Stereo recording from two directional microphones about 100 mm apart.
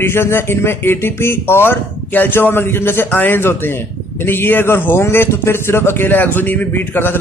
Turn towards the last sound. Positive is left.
turn(degrees=20)  # may be behind; listen again after turning